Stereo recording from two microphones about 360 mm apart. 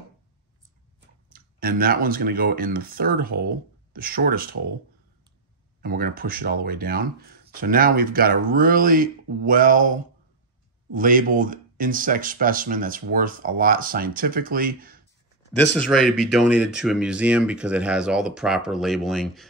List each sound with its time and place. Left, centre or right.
1.3 s speech: right
5.8 s speech: right
15.5 s speech: centre